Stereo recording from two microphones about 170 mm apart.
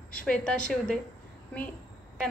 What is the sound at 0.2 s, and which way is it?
Speech, 5° left (ahead or behind).